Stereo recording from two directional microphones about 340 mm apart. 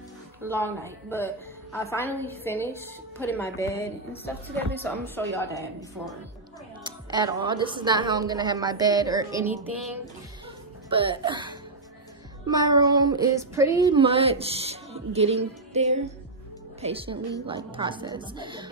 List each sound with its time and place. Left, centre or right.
0.5 s a woman's voice: centre
1.8 s a woman's voice: centre
6.8 s speech: centre
10.9 s speech: centre